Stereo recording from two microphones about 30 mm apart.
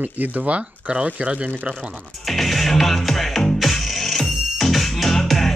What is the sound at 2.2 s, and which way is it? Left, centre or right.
Music, centre.